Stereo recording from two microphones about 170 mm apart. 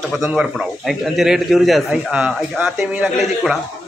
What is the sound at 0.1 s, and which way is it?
A man's voice, 5° right (ahead or behind).